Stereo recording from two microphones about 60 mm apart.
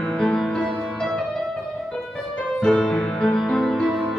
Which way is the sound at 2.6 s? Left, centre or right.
Centre.